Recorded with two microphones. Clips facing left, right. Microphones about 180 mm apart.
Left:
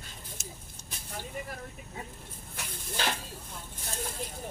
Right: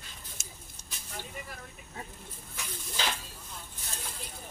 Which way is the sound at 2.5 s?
55° left (ahead or behind).